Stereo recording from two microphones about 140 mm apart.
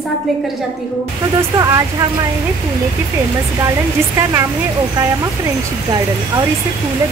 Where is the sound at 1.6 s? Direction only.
25° right (ahead or behind).